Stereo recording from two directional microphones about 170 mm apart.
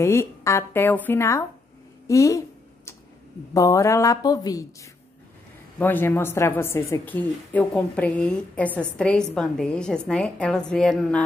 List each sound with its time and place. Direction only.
0.0 s a woman's voice: 15° left (ahead or behind)
2.0 s a sound: 20° left (ahead or behind)
3.5 s speech: 20° left (ahead or behind)
5.8 s a woman's voice: 10° left (ahead or behind)